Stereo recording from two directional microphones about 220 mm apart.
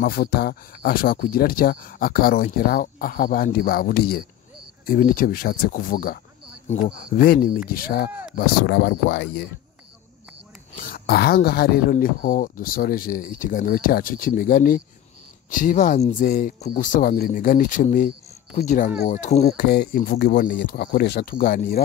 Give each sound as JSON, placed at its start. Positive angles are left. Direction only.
{"t": 0.0, "sound": "speech", "side_deg": 45}
{"t": 10.8, "sound": "speech", "side_deg": 45}
{"t": 19.7, "sound": "speech", "side_deg": 45}